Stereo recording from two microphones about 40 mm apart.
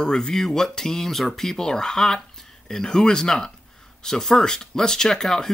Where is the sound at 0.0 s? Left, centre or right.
Centre.